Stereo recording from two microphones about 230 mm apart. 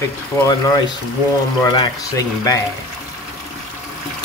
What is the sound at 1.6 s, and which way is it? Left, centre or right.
Speech, centre.